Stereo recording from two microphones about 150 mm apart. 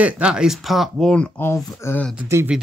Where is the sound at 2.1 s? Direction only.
15° right (ahead or behind).